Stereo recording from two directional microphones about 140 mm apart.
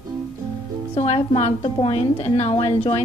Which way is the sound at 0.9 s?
45° left (ahead or behind).